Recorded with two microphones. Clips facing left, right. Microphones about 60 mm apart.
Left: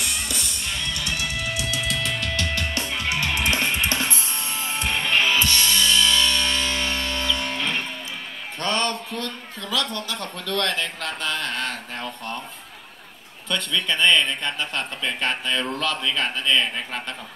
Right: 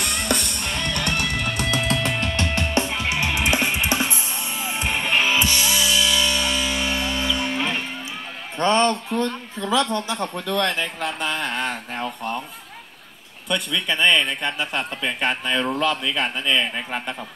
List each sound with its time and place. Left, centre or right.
0.0 s music: right; by 7.8 s centre
8.5 s speech: right
13.5 s a man's voice: centre